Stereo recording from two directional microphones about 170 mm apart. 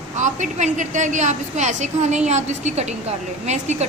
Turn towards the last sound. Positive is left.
turn(degrees=-40)  # may be behind; listen again after turning